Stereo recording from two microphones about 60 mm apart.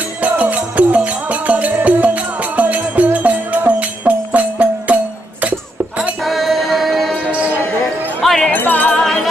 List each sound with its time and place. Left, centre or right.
0.2 s music: right
6.2 s music: centre
8.2 s music: centre
8.5 s music: left
9.0 s music: centre